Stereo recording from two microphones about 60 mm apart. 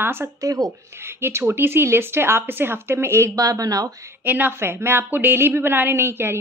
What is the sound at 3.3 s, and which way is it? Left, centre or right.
Speech, right.